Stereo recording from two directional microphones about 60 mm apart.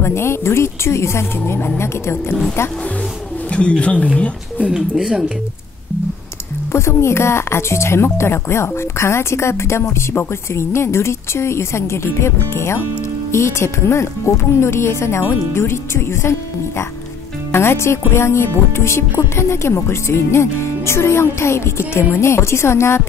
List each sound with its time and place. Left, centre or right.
0.0 s speech: left
3.4 s speech: centre
4.6 s speech: centre
6.7 s speech: left